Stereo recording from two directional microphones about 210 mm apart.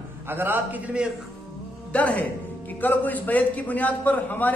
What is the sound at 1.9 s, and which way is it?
A man's voice, 5° left (ahead or behind).